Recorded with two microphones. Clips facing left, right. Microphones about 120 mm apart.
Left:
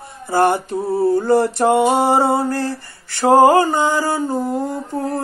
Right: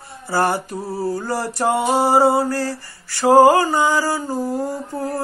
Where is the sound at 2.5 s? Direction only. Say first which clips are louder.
Left 1 dB; 55° left (ahead or behind).